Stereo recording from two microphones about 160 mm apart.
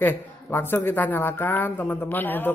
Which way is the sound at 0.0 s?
15° left (ahead or behind).